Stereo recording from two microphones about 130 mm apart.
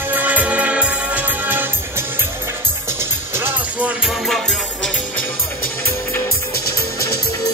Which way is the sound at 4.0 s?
Centre (ahead or behind).